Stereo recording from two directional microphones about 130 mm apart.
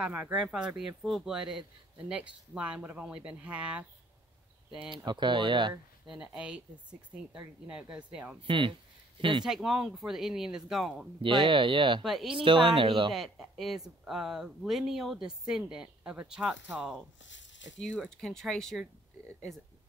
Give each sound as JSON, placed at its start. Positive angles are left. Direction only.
{"t": 0.0, "sound": "a woman's voice", "side_deg": -10}
{"t": 4.9, "sound": "speech", "side_deg": -35}
{"t": 6.0, "sound": "a woman's voice", "side_deg": -5}
{"t": 8.4, "sound": "speech", "side_deg": -40}
{"t": 9.4, "sound": "speech", "side_deg": -5}
{"t": 11.4, "sound": "speech", "side_deg": -40}
{"t": 12.0, "sound": "speech", "side_deg": 0}
{"t": 12.4, "sound": "speech", "side_deg": -40}
{"t": 13.1, "sound": "speech", "side_deg": 0}